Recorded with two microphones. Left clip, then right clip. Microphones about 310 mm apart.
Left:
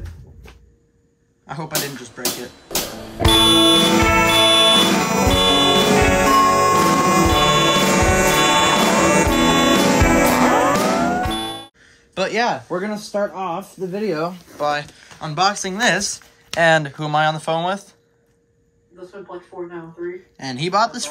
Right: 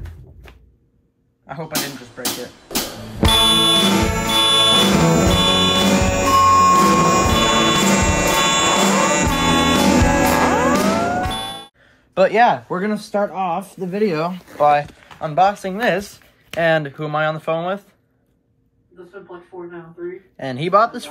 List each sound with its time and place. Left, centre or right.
1.5 s music: centre
12.1 s a sound: centre
13.3 s speech: right
15.1 s speech: centre
20.3 s speech: centre